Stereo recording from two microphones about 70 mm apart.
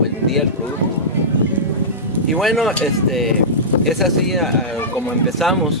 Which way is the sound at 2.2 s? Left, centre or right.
Centre.